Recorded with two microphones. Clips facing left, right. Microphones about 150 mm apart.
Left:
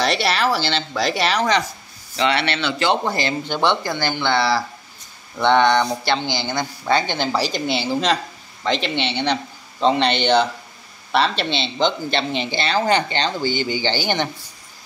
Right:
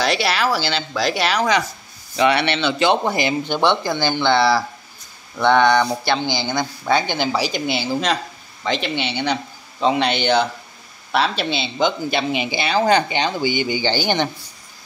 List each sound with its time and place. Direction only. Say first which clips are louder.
0.0 s speech: even; centre (ahead or behind)
2.1 s speech: right 3 dB; 15° right (ahead or behind)